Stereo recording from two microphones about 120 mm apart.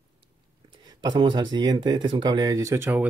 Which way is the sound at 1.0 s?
35° right (ahead or behind).